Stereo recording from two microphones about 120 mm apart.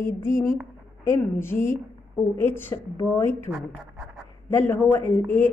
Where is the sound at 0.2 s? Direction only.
25° left (ahead or behind).